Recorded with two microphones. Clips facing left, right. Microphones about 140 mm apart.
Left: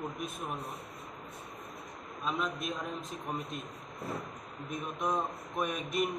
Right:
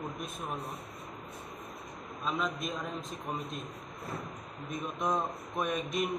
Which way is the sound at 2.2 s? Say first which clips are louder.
Right 1 dB; 5° left (ahead or behind).